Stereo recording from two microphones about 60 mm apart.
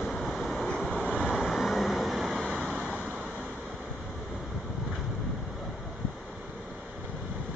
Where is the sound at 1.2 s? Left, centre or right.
Centre.